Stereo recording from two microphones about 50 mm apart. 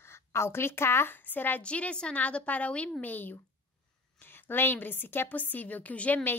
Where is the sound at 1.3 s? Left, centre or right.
Left.